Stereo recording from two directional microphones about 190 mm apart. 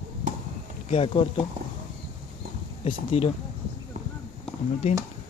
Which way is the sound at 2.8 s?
30° left (ahead or behind).